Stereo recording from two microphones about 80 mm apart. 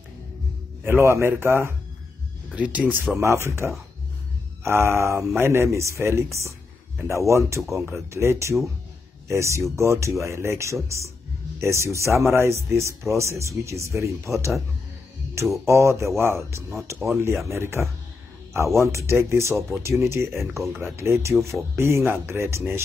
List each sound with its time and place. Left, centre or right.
0.8 s speech: right
2.5 s speech: centre
3.2 s speech: right
15.5 s speech: right